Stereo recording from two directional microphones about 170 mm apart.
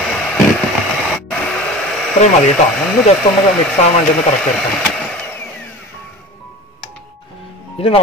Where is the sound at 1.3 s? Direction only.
5° left (ahead or behind).